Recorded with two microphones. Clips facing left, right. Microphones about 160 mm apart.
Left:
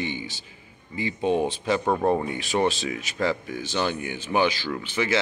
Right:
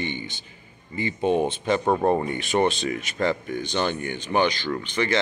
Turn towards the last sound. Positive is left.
turn(degrees=5)  # may be behind; listen again after turning